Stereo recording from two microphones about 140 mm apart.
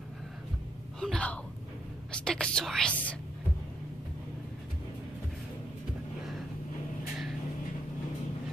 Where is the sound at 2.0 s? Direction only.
5° left (ahead or behind).